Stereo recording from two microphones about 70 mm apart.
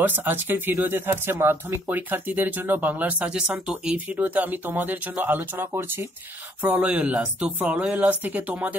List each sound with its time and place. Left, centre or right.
0.0 s speech: right
6.6 s speech: right